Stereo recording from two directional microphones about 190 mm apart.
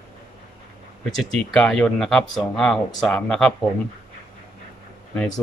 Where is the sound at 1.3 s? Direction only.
5° left (ahead or behind).